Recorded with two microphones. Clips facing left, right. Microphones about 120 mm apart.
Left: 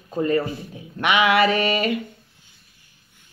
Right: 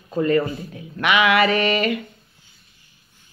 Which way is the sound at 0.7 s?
25° left (ahead or behind).